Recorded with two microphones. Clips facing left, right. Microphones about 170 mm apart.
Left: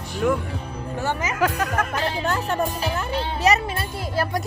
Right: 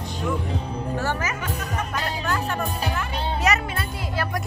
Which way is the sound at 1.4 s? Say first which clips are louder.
Left 7 dB; 90° left.